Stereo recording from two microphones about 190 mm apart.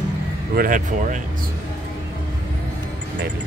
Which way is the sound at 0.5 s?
45° right (ahead or behind).